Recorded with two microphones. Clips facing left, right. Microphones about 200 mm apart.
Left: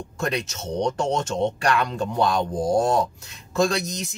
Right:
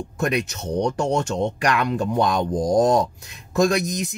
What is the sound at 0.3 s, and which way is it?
Speech, 15° right (ahead or behind).